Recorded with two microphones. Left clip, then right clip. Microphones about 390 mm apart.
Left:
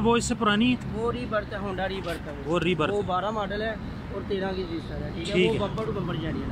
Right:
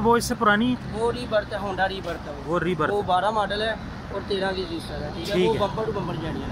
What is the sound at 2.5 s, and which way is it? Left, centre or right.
Speech, centre.